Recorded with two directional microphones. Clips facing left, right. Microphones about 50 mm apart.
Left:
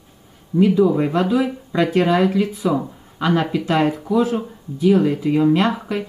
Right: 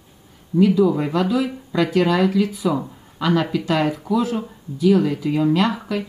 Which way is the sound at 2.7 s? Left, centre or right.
Centre.